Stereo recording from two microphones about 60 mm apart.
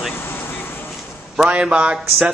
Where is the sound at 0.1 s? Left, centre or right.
Left.